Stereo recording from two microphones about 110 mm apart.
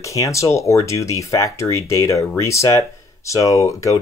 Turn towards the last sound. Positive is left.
turn(degrees=30)  # may be behind; listen again after turning